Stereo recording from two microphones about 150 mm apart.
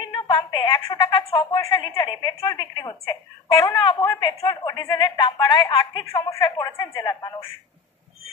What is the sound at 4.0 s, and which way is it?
A man's voice, 20° left (ahead or behind).